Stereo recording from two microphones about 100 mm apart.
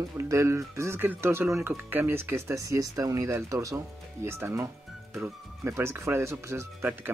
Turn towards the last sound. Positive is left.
turn(degrees=-25)  # may be behind; listen again after turning